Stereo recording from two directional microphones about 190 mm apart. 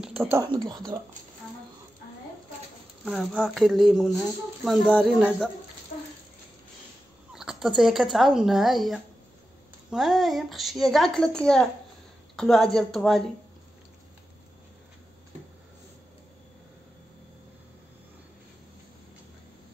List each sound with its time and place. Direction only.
0.0 s speech: 10° right (ahead or behind)
3.1 s a woman's voice: centre (ahead or behind)
7.3 s a woman's voice: centre (ahead or behind)